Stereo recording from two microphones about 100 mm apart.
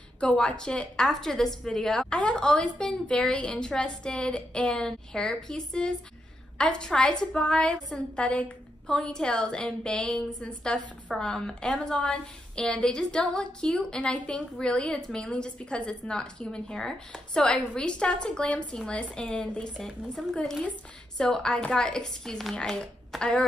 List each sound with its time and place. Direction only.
0.2 s a woman's voice: 10° left (ahead or behind)
21.2 s a woman's voice: 5° left (ahead or behind)